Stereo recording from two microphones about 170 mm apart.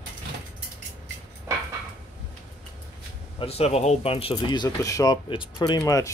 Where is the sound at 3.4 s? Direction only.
35° left (ahead or behind).